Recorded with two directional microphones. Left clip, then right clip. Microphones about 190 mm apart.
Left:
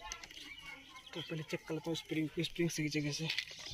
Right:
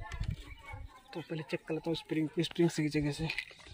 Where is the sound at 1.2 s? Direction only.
60° right (ahead or behind).